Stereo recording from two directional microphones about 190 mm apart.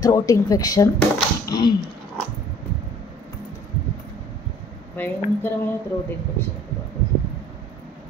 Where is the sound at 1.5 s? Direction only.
20° left (ahead or behind).